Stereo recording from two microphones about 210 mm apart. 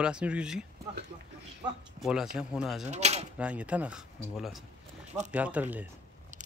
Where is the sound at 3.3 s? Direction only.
5° right (ahead or behind).